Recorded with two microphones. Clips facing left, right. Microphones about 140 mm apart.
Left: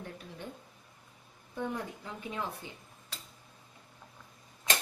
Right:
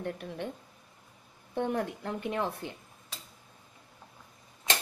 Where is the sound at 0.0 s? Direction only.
65° right (ahead or behind).